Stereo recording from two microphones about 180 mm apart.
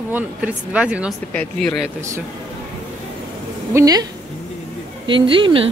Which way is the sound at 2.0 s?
15° right (ahead or behind).